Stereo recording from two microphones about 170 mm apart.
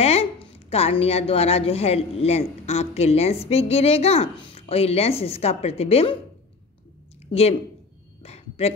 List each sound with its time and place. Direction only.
0.0 s a woman's voice: 40° left (ahead or behind)
7.2 s speech: 35° left (ahead or behind)
8.2 s a sound: 35° left (ahead or behind)